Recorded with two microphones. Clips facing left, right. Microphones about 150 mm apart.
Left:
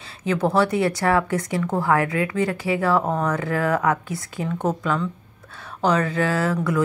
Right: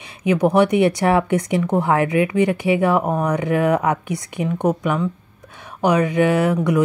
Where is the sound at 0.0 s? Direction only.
15° right (ahead or behind).